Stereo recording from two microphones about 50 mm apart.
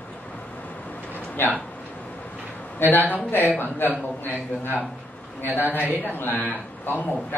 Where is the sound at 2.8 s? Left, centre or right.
Left.